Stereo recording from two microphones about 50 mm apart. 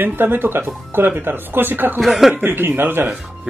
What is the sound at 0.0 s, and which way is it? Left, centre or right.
Speech, right.